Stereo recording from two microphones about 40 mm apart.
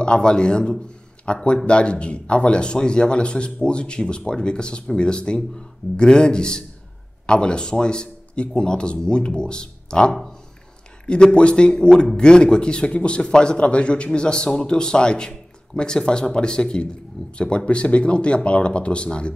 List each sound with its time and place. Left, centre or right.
0.0 s speech: left
11.3 s speech: left